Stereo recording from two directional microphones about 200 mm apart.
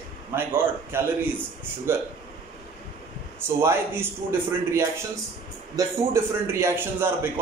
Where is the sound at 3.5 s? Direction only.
10° right (ahead or behind).